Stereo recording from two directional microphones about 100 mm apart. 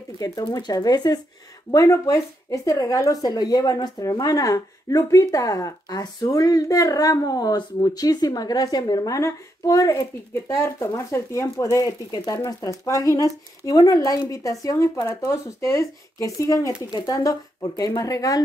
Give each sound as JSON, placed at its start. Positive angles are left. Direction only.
{"t": 0.2, "sound": "speech", "side_deg": 40}